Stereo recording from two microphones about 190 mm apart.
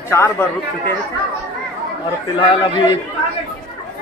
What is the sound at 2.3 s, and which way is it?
Speech, 25° left (ahead or behind).